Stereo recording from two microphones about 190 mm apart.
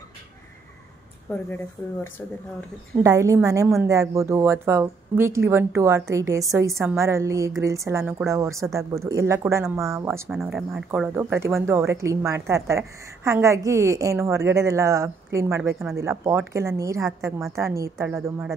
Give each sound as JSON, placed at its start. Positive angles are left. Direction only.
{"t": 3.0, "sound": "speech", "side_deg": -15}
{"t": 10.3, "sound": "speech", "side_deg": 0}